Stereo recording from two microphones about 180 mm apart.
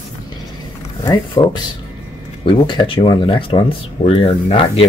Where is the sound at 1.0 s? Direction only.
25° left (ahead or behind).